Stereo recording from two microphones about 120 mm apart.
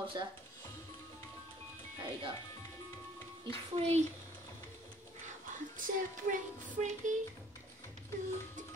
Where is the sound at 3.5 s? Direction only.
60° right (ahead or behind).